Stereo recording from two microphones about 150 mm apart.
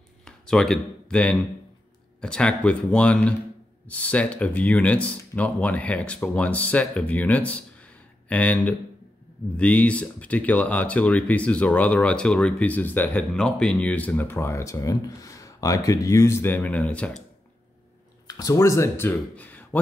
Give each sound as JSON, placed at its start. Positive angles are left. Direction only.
{"t": 0.2, "sound": "speech", "side_deg": 5}
{"t": 18.2, "sound": "speech", "side_deg": 25}